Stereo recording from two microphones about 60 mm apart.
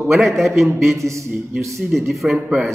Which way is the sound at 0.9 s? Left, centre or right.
Right.